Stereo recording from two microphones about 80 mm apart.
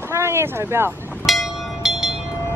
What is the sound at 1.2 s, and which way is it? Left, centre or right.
Train, centre.